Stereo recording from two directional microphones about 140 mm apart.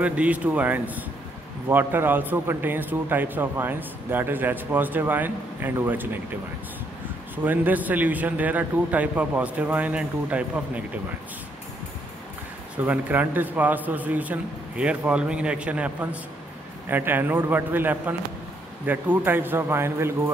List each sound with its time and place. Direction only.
0.0 s a man's voice: 10° right (ahead or behind)
7.4 s a man's voice: 10° right (ahead or behind)
12.7 s a man's voice: 10° right (ahead or behind)